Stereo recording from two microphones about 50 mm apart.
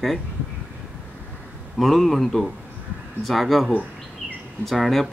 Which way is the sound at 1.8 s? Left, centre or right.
Centre.